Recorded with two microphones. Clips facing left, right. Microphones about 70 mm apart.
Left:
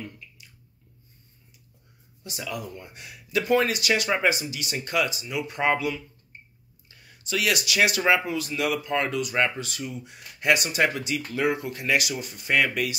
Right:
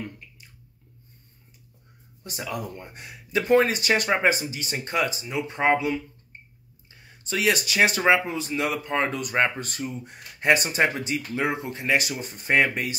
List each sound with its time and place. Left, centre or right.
2.2 s speech: right